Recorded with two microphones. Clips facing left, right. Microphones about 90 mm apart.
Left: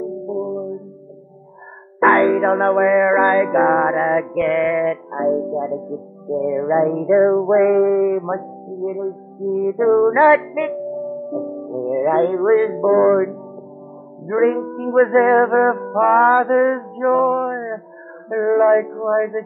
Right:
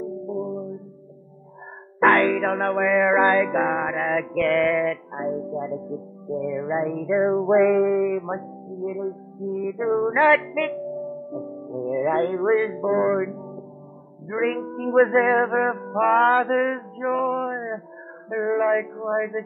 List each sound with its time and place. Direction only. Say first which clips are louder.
0.3 s music: left 5 dB; 20° left (ahead or behind)
2.1 s music: left 6 dB; 25° left (ahead or behind)
3.0 s music: left 4 dB; 10° left (ahead or behind)
3.6 s male singing: left 8 dB; 35° left (ahead or behind); by 4.4 s 20° left (ahead or behind)
4.4 s music: even; 5° left (ahead or behind)
5.1 s male singing: left 8 dB; 30° left (ahead or behind)
7.2 s music: left 4 dB; 5° left (ahead or behind)
8.2 s speech: left 6 dB; 20° left (ahead or behind)
10.1 s music: left 5 dB; 20° left (ahead or behind)
14.2 s male singing: left 8 dB; 30° left (ahead or behind)
15.9 s male singing: left 4 dB; 15° left (ahead or behind)
17.4 s a sound: left 5 dB; 15° left (ahead or behind)
18.3 s male singing: left 7 dB; 15° left (ahead or behind)